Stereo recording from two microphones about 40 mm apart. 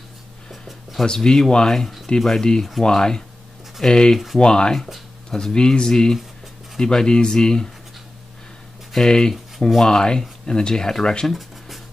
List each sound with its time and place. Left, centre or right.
0.5 s a sound: centre
1.0 s speech: centre
8.9 s speech: centre